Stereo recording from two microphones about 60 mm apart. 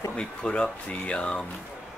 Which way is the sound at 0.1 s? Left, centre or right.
Centre.